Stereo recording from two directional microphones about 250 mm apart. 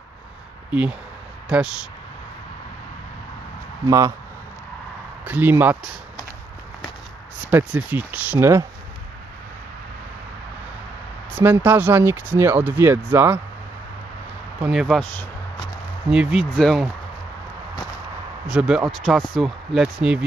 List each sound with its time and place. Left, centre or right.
0.7 s speech: centre
3.8 s speech: centre
5.2 s speech: centre
7.5 s speech: centre
11.3 s speech: centre
14.6 s speech: centre
18.5 s speech: centre